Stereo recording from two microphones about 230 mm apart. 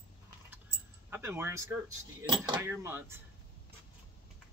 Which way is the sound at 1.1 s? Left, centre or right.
Centre.